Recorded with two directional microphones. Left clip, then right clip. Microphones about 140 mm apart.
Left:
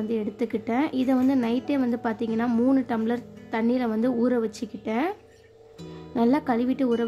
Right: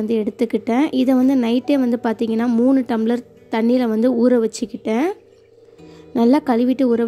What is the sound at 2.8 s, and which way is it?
A woman's voice, 35° right (ahead or behind).